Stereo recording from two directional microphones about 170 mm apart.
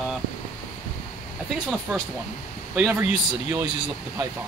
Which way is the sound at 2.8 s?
5° right (ahead or behind).